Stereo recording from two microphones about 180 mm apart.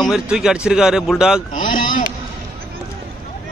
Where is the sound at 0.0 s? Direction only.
Centre (ahead or behind).